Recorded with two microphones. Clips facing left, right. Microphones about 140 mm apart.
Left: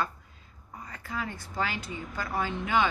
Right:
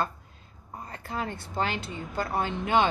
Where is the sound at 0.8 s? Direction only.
30° right (ahead or behind).